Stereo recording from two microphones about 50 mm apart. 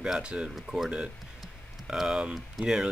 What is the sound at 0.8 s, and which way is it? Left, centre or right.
Speech, centre.